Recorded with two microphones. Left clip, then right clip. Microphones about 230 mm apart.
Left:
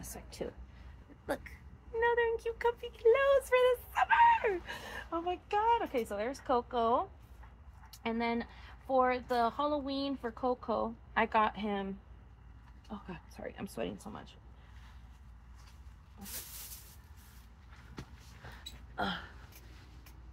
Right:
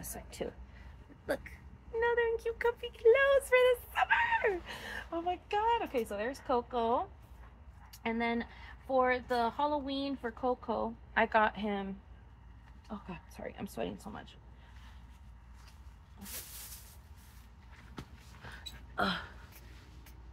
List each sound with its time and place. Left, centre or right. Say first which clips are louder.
0.0 s speech: right 1 dB; centre
8.1 s speech: right 1 dB; centre
18.9 s a sound: right 3 dB; right